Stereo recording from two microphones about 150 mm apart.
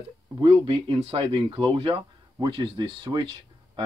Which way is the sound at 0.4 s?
35° right (ahead or behind).